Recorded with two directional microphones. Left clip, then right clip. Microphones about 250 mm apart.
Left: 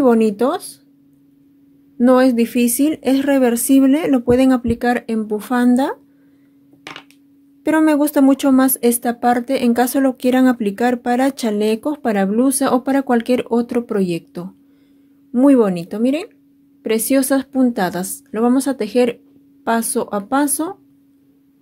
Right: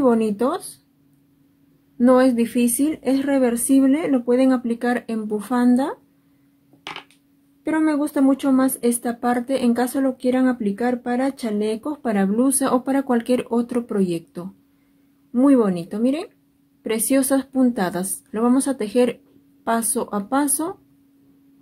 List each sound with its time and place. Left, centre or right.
0.0 s speech: left
2.0 s speech: left
7.6 s speech: left